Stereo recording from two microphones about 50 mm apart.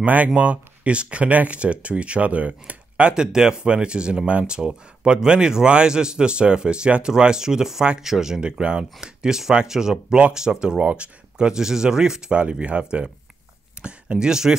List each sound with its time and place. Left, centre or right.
0.0 s a man's voice: right; by 8.4 s centre
8.4 s a man's voice: centre
13.8 s a man's voice: right